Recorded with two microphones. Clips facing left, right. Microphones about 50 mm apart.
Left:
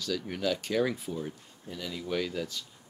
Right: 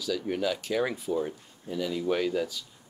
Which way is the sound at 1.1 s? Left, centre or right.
Right.